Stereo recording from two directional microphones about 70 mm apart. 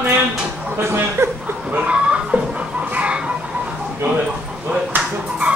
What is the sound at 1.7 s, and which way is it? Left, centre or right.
Chicken, centre.